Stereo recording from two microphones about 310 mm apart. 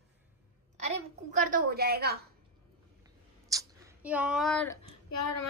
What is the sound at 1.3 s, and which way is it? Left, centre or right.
Speech, right.